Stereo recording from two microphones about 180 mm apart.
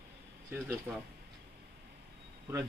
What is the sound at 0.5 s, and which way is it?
Speech, 10° right (ahead or behind).